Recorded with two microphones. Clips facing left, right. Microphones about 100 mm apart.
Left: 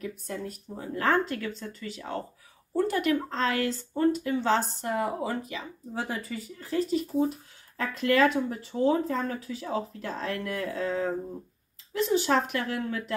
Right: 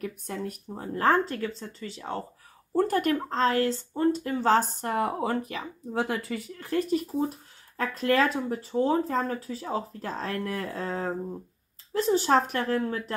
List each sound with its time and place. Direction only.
0.0 s speech: 60° right (ahead or behind)
0.7 s speech: 35° right (ahead or behind)
2.7 s speech: 45° right (ahead or behind); by 4.2 s 30° right (ahead or behind)
4.2 s speech: 40° right (ahead or behind)